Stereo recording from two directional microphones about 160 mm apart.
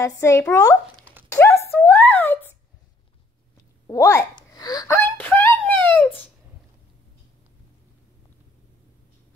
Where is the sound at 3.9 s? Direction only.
20° left (ahead or behind).